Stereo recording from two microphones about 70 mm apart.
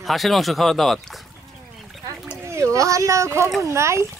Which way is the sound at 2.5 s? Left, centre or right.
Right.